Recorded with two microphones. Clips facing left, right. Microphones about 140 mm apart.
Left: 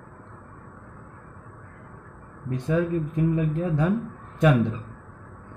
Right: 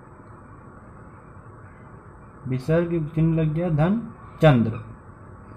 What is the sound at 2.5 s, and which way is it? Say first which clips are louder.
Speech: right 3 dB; 75° right (ahead or behind).